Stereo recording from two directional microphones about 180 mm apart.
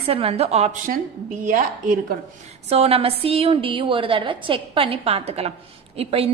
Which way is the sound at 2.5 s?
35° right (ahead or behind).